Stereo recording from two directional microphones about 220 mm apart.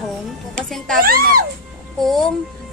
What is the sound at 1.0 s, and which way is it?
Speech, 40° right (ahead or behind).